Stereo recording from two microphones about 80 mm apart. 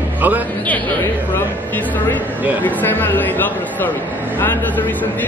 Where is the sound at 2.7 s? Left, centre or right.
Left.